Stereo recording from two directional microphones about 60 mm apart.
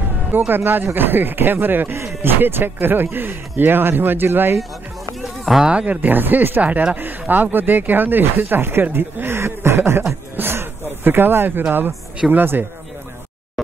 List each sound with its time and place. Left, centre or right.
0.3 s speech: right
5.2 s a sound: centre
5.7 s speech: right
5.9 s speech: right
6.6 s speech: right